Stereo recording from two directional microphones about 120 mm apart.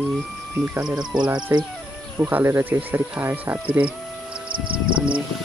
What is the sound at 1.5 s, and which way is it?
Speech, 25° right (ahead or behind).